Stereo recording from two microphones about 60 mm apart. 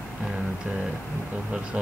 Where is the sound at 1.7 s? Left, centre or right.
Centre.